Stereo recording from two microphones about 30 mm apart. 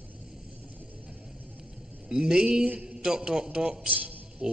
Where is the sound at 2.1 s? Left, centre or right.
Right.